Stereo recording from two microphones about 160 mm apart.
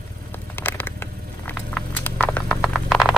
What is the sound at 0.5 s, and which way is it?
Patter, 10° left (ahead or behind).